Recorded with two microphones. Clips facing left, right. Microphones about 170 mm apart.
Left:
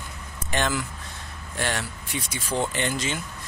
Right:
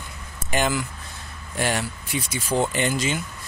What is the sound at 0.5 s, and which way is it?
Speech, 5° right (ahead or behind).